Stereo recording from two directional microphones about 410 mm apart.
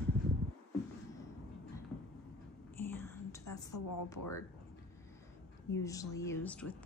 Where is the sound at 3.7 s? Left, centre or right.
Left.